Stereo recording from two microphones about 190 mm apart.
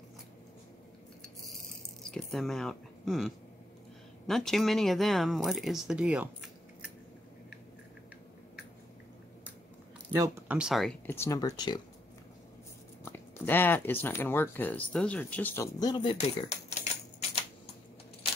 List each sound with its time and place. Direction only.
2.0 s speech: centre (ahead or behind)
10.1 s speech: 10° right (ahead or behind)
11.1 s speech: 15° left (ahead or behind)
13.0 s speech: 10° left (ahead or behind)